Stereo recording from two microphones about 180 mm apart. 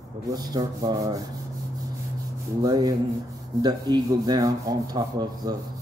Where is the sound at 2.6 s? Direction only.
20° right (ahead or behind).